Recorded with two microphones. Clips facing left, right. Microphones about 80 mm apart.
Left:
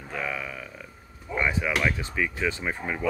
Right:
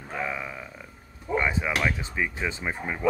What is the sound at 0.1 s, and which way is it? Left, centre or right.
Speech, right.